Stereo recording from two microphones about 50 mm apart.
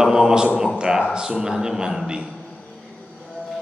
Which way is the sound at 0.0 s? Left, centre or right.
Centre.